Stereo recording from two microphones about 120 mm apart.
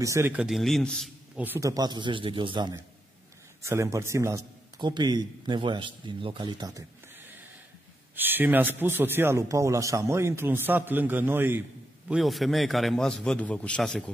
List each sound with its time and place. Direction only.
0.0 s a man's voice: 25° right (ahead or behind)
0.3 s a man's voice: 5° right (ahead or behind)
1.3 s a man's voice: 15° right (ahead or behind)
1.6 s speech: 30° right (ahead or behind)
3.6 s a man's voice: 25° right (ahead or behind)
4.7 s speech: 40° right (ahead or behind)
8.2 s a man's voice: 15° right (ahead or behind)
12.1 s a man's voice: centre (ahead or behind)